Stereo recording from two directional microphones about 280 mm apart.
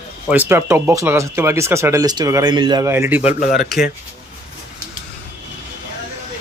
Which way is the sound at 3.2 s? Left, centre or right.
Left.